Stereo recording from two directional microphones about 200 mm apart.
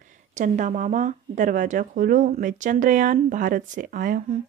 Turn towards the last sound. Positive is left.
turn(degrees=-45)  # may be behind; listen again after turning